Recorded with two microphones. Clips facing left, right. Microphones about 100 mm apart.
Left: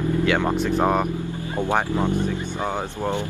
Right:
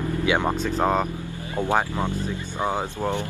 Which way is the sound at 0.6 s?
10° left (ahead or behind).